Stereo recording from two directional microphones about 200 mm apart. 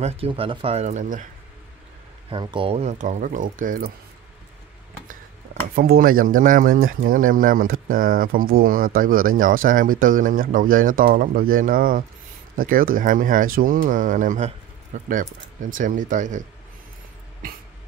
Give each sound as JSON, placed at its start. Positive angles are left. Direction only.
{"t": 0.0, "sound": "speech", "side_deg": -30}
{"t": 2.2, "sound": "speech", "side_deg": -25}
{"t": 5.8, "sound": "speech", "side_deg": -45}